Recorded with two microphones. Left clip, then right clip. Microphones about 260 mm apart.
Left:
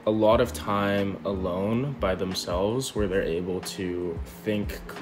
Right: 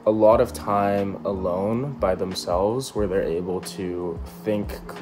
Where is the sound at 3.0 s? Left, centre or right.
Centre.